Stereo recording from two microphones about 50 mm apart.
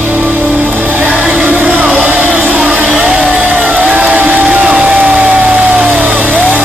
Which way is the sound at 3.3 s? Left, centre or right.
Right.